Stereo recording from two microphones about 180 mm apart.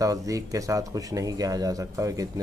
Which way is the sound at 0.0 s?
20° right (ahead or behind).